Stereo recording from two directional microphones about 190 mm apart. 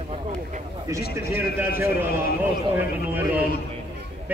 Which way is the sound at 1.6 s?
10° right (ahead or behind).